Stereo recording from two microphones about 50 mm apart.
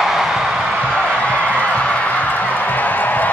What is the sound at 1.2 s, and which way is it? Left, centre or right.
Music, left.